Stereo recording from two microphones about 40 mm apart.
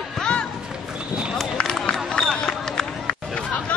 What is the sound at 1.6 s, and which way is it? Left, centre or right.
Run, left.